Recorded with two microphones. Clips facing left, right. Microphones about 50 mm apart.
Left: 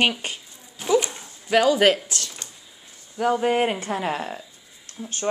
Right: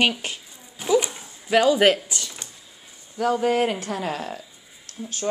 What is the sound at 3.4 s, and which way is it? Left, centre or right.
Speech, left.